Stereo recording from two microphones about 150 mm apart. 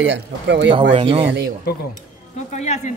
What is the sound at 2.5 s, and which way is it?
Speech, 50° left (ahead or behind).